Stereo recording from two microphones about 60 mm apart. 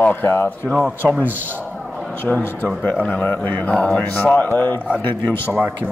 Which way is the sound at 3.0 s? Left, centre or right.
Left.